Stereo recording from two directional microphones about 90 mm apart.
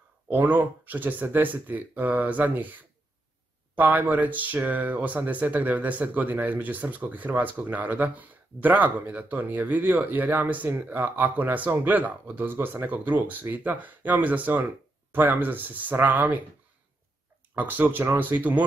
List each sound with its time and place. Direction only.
0.3 s speech: 20° right (ahead or behind)
17.6 s speech: 20° right (ahead or behind)